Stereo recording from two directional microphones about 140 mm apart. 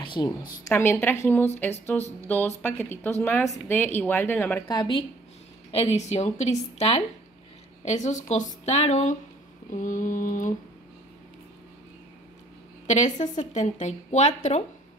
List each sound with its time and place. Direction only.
0.0 s a woman's voice: 35° left (ahead or behind)
0.7 s a woman's voice: 15° left (ahead or behind)
4.6 s a woman's voice: 35° left (ahead or behind)
5.7 s a woman's voice: 45° left (ahead or behind)
7.8 s a woman's voice: 55° left (ahead or behind)
9.7 s a woman's voice: 65° left (ahead or behind)
12.8 s a woman's voice: 60° left (ahead or behind)